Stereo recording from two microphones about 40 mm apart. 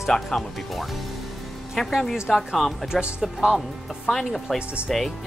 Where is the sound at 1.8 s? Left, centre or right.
Centre.